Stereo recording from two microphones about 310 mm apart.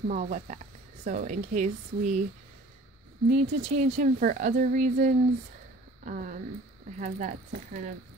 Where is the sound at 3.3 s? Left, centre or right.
Right.